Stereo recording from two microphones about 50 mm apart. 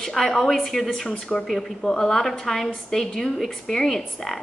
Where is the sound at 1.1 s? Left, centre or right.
Left; by 4.4 s centre.